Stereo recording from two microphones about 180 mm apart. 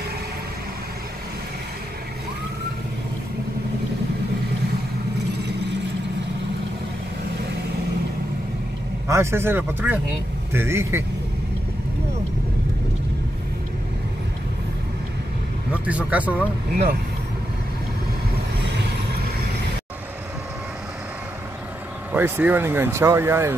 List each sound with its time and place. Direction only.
9.0 s speech: 15° right (ahead or behind)
15.7 s speech: 5° right (ahead or behind)
18.6 s vehicle: 75° right (ahead or behind)
22.1 s speech: 10° right (ahead or behind)